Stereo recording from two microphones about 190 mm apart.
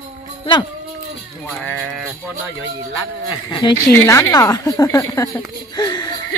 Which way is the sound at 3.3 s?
25° left (ahead or behind).